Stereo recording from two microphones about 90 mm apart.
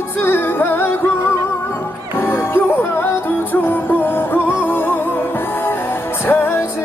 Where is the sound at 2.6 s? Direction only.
25° left (ahead or behind).